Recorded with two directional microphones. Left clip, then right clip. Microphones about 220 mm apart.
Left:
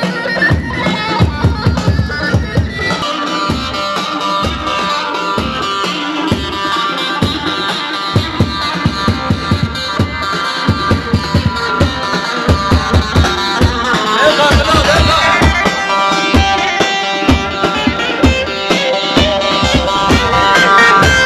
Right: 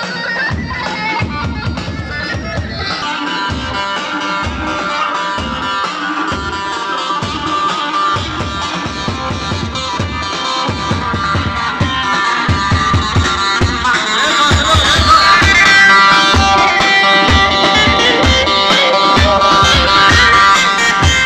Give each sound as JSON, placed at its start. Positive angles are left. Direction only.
{"t": 13.2, "sound": "music", "side_deg": 55}
{"t": 15.8, "sound": "music", "side_deg": 25}